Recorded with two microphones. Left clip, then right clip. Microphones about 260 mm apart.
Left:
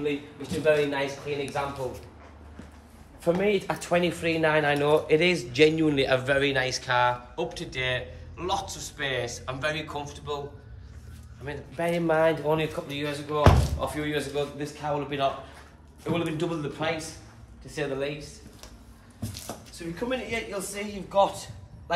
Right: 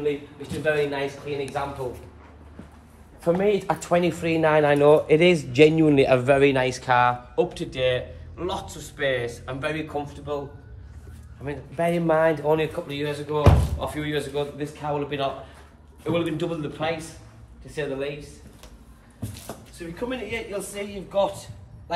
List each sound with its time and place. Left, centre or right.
0.0 s speech: centre
3.2 s speech: centre
11.4 s speech: right
12.4 s speech: centre
19.2 s speech: centre